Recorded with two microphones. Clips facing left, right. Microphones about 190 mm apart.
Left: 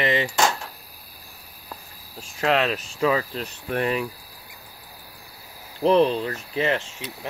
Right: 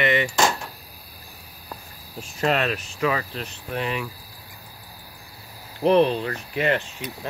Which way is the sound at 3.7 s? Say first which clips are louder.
Left 4 dB; 45° left (ahead or behind).